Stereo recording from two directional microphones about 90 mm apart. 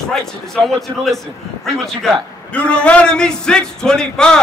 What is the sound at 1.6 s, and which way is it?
Speech, 5° left (ahead or behind).